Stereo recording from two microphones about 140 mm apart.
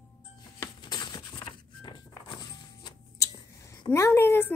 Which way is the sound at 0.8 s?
30° left (ahead or behind).